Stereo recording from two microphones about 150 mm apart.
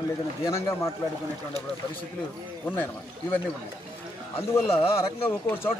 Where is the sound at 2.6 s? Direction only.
15° left (ahead or behind).